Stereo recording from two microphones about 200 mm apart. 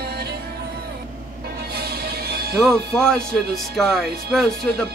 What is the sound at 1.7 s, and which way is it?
Music, 50° right (ahead or behind).